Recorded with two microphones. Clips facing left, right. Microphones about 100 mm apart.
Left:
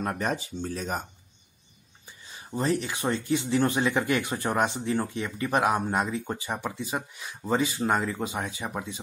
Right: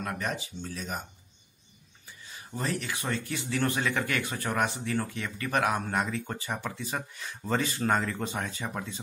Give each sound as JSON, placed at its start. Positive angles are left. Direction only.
{"t": 0.0, "sound": "speech", "side_deg": 35}
{"t": 2.0, "sound": "speech", "side_deg": 25}